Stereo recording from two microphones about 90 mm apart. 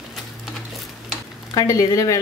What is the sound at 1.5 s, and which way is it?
Speech, 40° left (ahead or behind).